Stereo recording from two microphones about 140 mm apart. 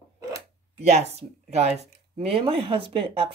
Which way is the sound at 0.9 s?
50° right (ahead or behind).